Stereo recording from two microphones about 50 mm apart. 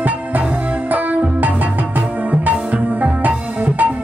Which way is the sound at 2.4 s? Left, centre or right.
Right.